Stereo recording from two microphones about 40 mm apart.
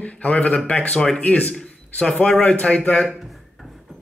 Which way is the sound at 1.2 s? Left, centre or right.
Left.